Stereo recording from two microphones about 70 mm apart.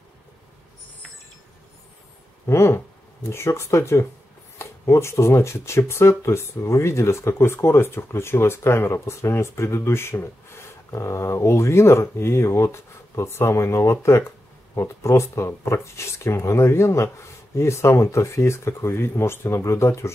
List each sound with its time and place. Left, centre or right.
2.4 s speech: left